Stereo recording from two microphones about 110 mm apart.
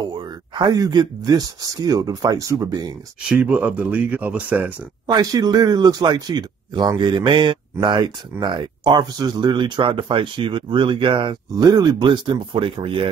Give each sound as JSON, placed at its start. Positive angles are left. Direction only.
{"t": 0.0, "sound": "speech", "side_deg": -40}
{"t": 3.3, "sound": "speech", "side_deg": -15}
{"t": 5.0, "sound": "speech", "side_deg": -35}
{"t": 11.5, "sound": "speech", "side_deg": -35}